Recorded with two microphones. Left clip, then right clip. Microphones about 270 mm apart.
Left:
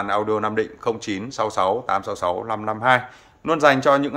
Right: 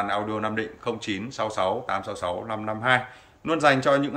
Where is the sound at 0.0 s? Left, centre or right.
Centre.